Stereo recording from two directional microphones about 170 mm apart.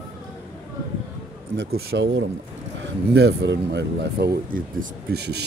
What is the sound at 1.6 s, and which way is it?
Speech, 80° right.